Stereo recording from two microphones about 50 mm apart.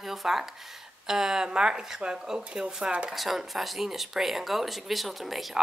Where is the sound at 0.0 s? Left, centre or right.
Centre; by 3.1 s right.